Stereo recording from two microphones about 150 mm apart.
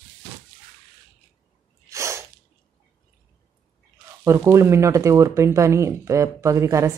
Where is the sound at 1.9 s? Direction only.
20° right (ahead or behind).